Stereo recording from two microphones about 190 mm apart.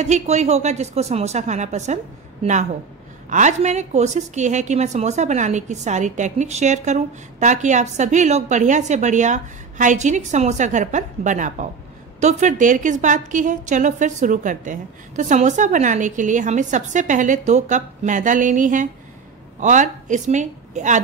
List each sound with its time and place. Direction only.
0.0 s a woman's voice: 35° right (ahead or behind)
3.3 s a woman's voice: 40° right (ahead or behind)